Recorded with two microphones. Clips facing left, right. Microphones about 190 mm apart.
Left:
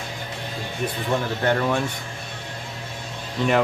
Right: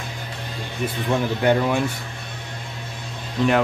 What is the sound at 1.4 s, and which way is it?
Speech, 10° right (ahead or behind).